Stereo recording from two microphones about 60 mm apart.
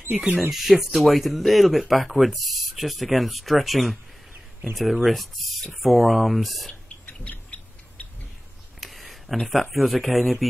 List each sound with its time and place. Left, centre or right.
0.5 s speech: centre
6.7 s a sound: left
8.8 s speech: centre